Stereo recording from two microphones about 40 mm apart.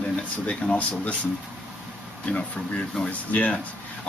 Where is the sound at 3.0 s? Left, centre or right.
Left.